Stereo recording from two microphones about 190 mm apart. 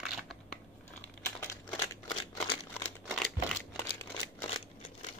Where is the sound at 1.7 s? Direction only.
20° left (ahead or behind).